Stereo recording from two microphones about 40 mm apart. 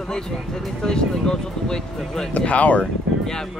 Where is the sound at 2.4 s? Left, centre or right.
Left.